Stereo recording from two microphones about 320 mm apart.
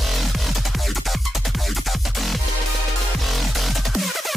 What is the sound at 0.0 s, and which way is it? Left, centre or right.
Music, centre.